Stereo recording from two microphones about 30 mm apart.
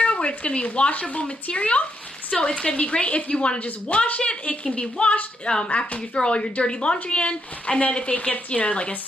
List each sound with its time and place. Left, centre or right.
0.0 s speech: left
0.9 s speech: left
1.2 s a woman's voice: left
4.5 s a woman's voice: left